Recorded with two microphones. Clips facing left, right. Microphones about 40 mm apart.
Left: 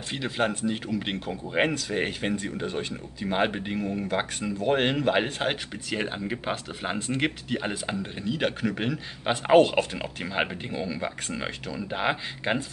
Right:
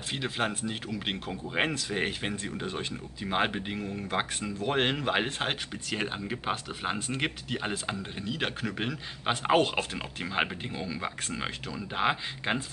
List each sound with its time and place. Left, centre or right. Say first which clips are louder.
0.1 s a man's voice: left 4 dB; centre